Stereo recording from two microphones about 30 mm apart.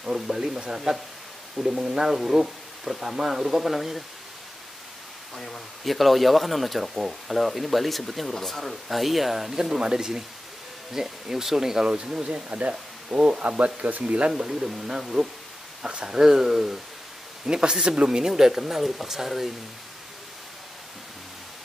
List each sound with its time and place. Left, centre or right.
0.1 s speech: centre
2.0 s speech: centre
5.3 s speech: centre
5.9 s speech: centre
9.8 s speech: right
11.8 s speech: right
12.5 s speech: right
13.4 s speech: right
14.3 s speech: centre
17.5 s speech: right
18.2 s speech: centre